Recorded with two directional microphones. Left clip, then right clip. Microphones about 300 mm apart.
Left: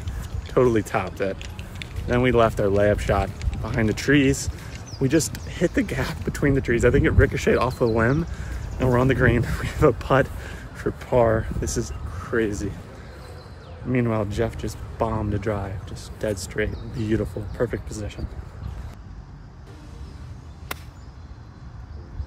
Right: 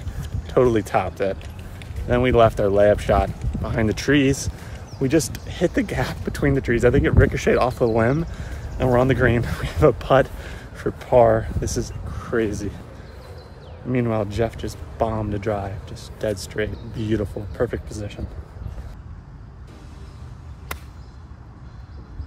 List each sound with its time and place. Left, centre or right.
0.5 s speech: centre
13.8 s speech: centre
20.7 s a sound: centre